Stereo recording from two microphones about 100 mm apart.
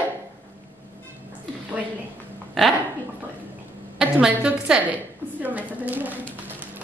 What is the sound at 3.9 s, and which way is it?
A woman's voice, 10° right (ahead or behind).